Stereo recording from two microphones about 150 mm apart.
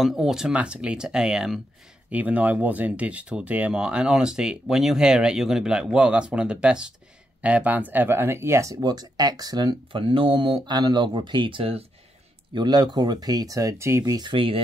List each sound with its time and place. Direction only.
0.0 s speech: centre (ahead or behind); by 14.6 s 35° right (ahead or behind)